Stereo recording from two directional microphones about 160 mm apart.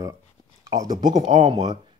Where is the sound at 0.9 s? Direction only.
55° right (ahead or behind).